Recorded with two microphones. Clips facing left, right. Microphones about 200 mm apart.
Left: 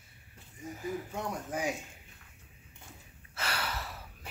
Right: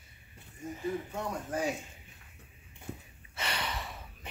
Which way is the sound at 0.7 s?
5° left (ahead or behind).